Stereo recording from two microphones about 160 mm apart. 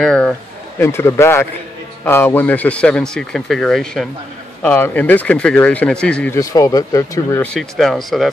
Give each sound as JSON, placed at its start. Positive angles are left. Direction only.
{"t": 0.0, "sound": "speech", "side_deg": 5}
{"t": 6.3, "sound": "speech", "side_deg": 20}
{"t": 7.4, "sound": "speech", "side_deg": 5}